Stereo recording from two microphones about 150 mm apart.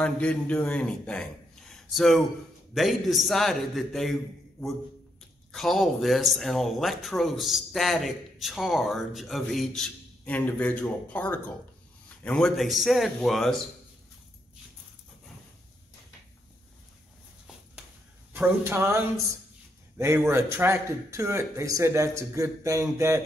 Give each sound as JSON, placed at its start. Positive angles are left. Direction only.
{"t": 0.0, "sound": "a man's voice", "side_deg": 5}
{"t": 18.3, "sound": "speech", "side_deg": -15}